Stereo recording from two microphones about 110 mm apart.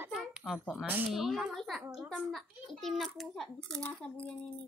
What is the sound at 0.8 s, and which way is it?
Speech, 15° right (ahead or behind).